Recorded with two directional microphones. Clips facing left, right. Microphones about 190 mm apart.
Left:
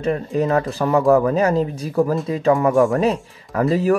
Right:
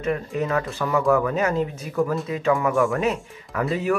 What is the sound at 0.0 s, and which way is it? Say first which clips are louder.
Speech: left 5 dB; 35° left (ahead or behind).